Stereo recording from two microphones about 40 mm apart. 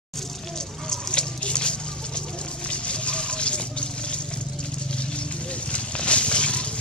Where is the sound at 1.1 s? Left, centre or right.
Left.